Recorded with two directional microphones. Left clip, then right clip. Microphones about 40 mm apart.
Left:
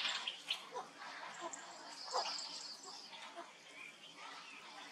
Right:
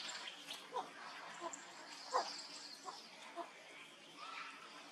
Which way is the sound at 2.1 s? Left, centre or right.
Left.